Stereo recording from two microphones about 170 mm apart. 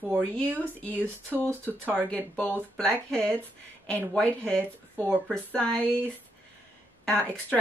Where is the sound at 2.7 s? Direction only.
5° left (ahead or behind).